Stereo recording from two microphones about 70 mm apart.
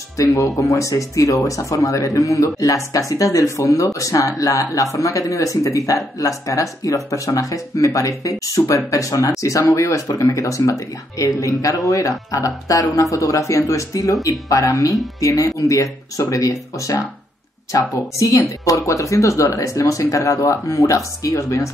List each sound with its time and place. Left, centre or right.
0.2 s speech: left